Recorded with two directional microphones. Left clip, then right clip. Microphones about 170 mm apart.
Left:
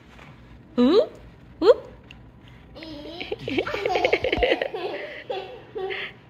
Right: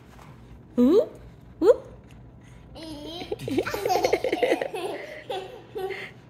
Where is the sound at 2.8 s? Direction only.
30° right (ahead or behind).